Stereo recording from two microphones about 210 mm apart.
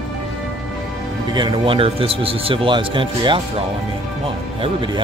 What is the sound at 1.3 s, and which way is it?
Speech, 25° right (ahead or behind).